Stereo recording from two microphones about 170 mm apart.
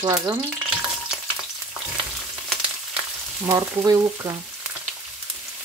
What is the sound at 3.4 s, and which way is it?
Frying, 15° right (ahead or behind).